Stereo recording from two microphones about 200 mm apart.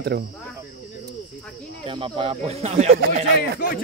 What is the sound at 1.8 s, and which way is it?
Speech, 25° right (ahead or behind).